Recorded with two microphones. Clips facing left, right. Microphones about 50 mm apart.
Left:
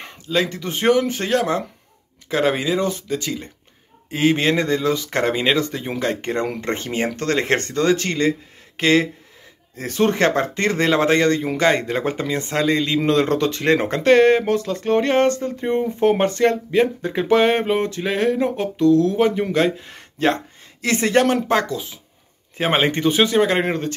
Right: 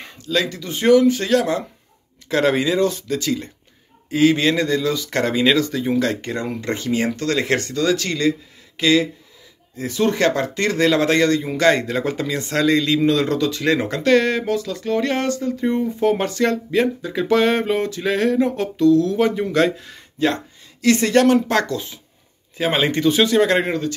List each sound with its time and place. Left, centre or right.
0.2 s speech: left
2.2 s speech: centre
4.1 s speech: left
13.0 s speech: left; by 19.9 s centre
19.9 s a sound: left
20.8 s speech: left
22.6 s speech: left
23.6 s speech: left